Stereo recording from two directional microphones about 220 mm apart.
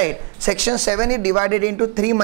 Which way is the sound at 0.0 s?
10° right (ahead or behind).